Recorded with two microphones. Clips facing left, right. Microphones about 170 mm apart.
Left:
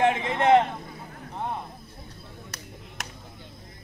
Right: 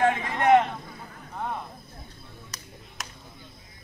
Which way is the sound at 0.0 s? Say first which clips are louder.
Left 1 dB; 25° left (ahead or behind).